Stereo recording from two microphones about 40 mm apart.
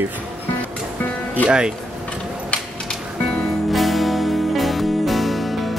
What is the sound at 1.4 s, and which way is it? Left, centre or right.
Speech, right.